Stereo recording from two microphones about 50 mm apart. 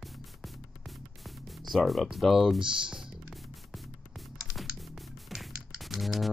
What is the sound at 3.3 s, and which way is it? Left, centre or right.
Music, centre.